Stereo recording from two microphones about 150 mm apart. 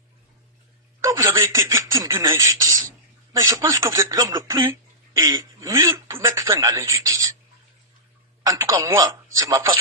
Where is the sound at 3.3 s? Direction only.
25° right (ahead or behind).